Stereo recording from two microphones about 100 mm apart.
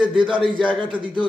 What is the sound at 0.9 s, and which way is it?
Speech, 60° right (ahead or behind).